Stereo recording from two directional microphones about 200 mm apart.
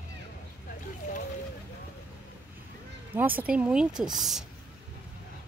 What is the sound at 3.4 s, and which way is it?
Speech, 5° right (ahead or behind).